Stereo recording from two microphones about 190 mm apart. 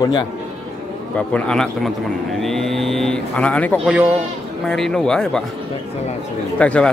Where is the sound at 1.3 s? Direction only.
5° left (ahead or behind).